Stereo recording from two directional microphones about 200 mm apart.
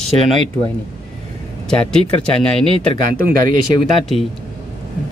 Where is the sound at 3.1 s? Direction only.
45° right (ahead or behind).